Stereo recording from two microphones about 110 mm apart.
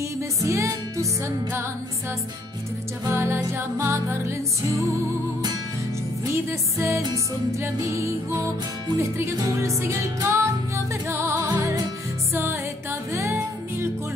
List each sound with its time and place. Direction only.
0.4 s music: 30° right (ahead or behind)
3.1 s music: 20° right (ahead or behind)
11.5 s music: 35° right (ahead or behind)
13.1 s music: 25° right (ahead or behind)